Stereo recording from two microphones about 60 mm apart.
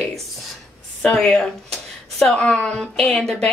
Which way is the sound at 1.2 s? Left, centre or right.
Centre.